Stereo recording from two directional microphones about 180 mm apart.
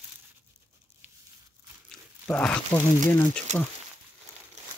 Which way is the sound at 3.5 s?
40° right (ahead or behind).